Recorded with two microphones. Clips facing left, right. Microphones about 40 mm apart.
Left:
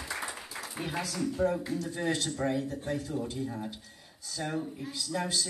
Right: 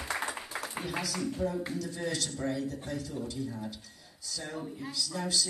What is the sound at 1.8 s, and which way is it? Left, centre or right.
A man's voice, left.